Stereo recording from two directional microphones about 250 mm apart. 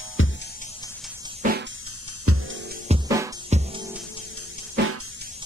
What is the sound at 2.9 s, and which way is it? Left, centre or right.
Music, right.